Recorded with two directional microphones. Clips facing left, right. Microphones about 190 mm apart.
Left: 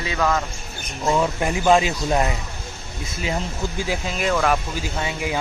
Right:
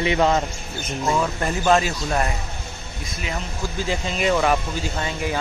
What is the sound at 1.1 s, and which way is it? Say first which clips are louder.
Speech: left 3 dB; 10° left (ahead or behind).